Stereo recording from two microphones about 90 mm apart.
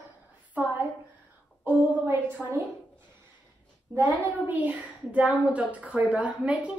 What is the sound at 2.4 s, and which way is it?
Speech, centre (ahead or behind).